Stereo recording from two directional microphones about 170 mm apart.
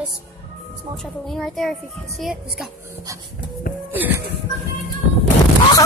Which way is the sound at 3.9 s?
10° right (ahead or behind).